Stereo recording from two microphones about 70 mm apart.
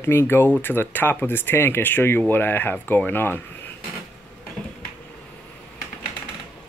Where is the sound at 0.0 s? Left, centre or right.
Left.